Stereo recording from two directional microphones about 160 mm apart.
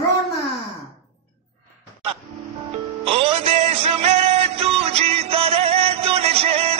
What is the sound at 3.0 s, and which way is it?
Music, 40° right (ahead or behind).